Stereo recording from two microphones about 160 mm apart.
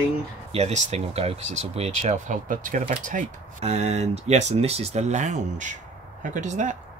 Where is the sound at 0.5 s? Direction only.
45° right (ahead or behind).